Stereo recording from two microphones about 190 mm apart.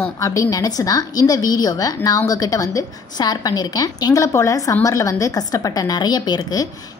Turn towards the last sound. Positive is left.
turn(degrees=20)  # may be behind; listen again after turning